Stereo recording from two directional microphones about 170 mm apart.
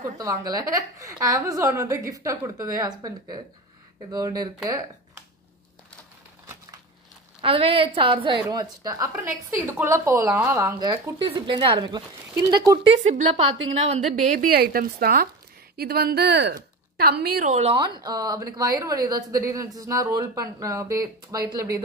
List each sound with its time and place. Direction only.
0.2 s a woman's voice: 20° right (ahead or behind)
4.1 s a woman's voice: 20° right (ahead or behind)
7.4 s a woman's voice: 35° right (ahead or behind)
13.0 s a woman's voice: 35° right (ahead or behind); by 16.5 s 80° right
17.5 s a woman's voice: 35° right (ahead or behind); by 21.7 s 20° right (ahead or behind)